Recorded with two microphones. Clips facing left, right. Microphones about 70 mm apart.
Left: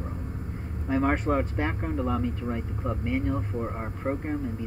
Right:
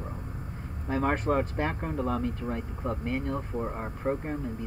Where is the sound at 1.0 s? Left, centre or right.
Centre.